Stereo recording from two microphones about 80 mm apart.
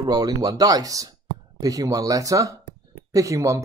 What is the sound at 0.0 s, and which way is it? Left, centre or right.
Speech, right.